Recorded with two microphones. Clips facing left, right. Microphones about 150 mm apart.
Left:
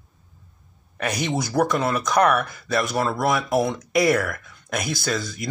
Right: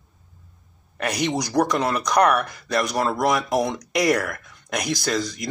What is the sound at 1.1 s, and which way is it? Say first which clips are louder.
Speech: right 2 dB; 15° right (ahead or behind).